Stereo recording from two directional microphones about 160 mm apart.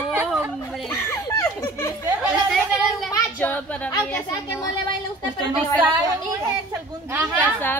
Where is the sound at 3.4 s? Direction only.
10° left (ahead or behind).